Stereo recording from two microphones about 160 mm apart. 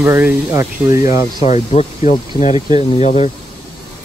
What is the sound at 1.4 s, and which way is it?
Speech, 45° left (ahead or behind).